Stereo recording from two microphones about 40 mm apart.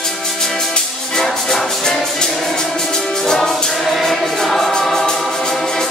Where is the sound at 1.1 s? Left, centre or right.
Centre.